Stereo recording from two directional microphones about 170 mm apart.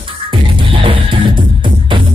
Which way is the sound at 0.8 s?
30° right (ahead or behind).